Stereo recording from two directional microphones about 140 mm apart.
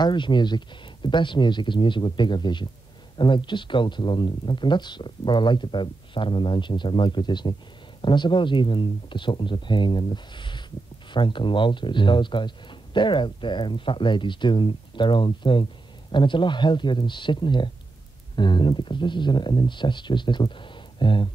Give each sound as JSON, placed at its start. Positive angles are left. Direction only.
{"t": 0.0, "sound": "speech", "side_deg": 35}